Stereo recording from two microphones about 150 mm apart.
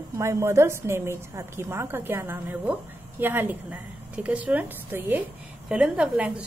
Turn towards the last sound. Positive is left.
turn(degrees=-10)  # may be behind; listen again after turning